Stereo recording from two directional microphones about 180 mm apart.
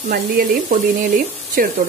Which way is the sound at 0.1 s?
55° right (ahead or behind).